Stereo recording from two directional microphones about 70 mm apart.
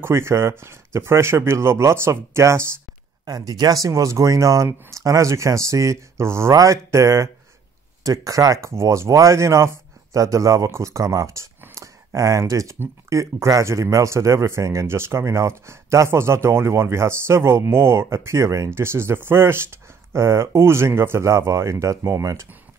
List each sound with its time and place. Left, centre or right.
0.0 s speech: right
3.3 s speech: right